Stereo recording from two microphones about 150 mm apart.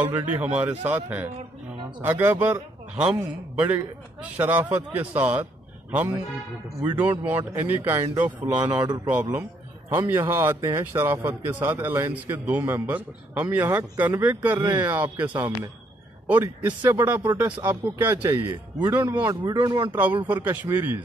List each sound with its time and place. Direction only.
0.1 s a man's voice: 10° right (ahead or behind)
8.7 s speech: 25° right (ahead or behind)
9.1 s a man's voice: 10° right (ahead or behind)
19.1 s speech: 30° right (ahead or behind)
20.2 s a man's voice: 10° right (ahead or behind)